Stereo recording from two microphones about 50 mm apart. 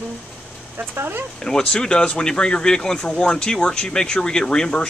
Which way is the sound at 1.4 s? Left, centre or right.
Centre.